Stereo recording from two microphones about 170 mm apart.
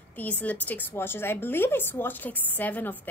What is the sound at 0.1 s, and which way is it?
A woman's voice, 10° left (ahead or behind).